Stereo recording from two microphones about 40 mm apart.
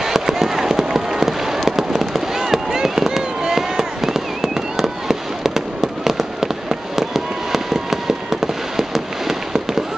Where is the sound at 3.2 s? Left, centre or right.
Centre.